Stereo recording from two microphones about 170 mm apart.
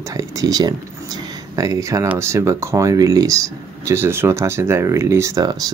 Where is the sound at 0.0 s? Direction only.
20° right (ahead or behind).